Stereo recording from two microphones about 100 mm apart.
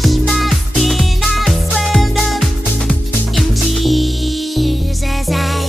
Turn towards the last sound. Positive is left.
turn(degrees=0)  # may be behind; listen again after turning